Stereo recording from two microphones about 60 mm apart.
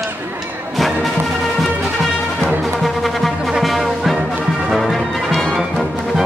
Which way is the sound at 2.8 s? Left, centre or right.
Centre.